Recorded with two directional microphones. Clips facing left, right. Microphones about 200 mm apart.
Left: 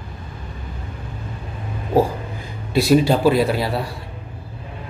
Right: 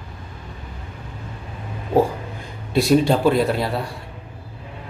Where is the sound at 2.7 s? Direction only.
Centre (ahead or behind).